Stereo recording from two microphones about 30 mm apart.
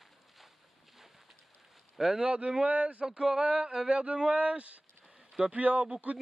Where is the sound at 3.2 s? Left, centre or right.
Right.